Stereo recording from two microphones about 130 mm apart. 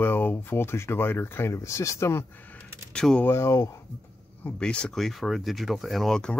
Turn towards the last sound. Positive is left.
turn(degrees=5)  # may be behind; listen again after turning